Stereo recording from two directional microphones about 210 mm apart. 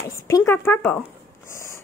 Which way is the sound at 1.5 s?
10° left (ahead or behind).